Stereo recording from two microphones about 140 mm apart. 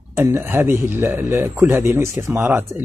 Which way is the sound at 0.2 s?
20° right (ahead or behind).